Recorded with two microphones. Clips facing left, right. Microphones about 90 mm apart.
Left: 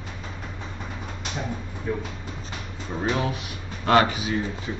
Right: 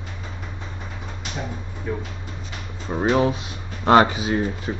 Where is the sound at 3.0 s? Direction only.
30° right (ahead or behind).